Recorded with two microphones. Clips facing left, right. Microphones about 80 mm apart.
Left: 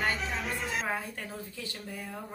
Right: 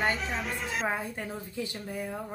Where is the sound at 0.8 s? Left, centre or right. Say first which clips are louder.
Right 3 dB; right.